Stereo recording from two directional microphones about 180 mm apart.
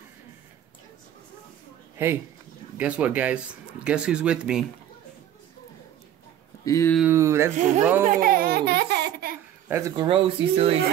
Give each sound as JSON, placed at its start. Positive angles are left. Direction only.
{"t": 2.0, "sound": "speech", "side_deg": -10}
{"t": 6.6, "sound": "speech", "side_deg": 15}
{"t": 7.0, "sound": "speech", "side_deg": -15}
{"t": 8.0, "sound": "speech", "side_deg": -50}
{"t": 9.7, "sound": "speech", "side_deg": -15}
{"t": 9.9, "sound": "speech", "side_deg": -30}